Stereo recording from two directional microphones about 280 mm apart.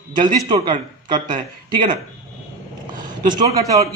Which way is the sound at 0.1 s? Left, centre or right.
Centre.